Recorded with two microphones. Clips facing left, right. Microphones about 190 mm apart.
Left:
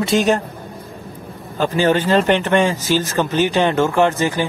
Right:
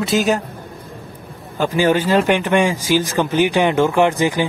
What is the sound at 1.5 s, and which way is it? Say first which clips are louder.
Speech: even; 10° right (ahead or behind).